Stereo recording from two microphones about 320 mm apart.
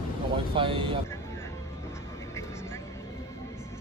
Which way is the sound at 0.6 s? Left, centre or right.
Centre.